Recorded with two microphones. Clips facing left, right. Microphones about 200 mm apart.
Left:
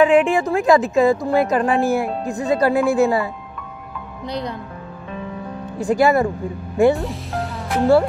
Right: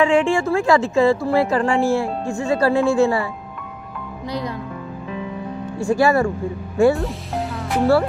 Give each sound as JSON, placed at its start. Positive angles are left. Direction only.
{"t": 0.0, "sound": "a woman's voice", "side_deg": 20}
{"t": 5.8, "sound": "speech", "side_deg": 20}
{"t": 7.0, "sound": "music", "side_deg": 0}